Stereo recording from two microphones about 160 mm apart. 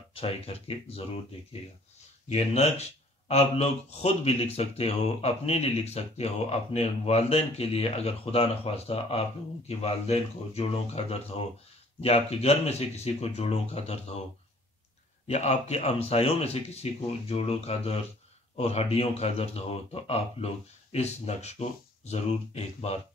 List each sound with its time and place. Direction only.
0.1 s speech: 35° left (ahead or behind)
15.2 s speech: 45° left (ahead or behind)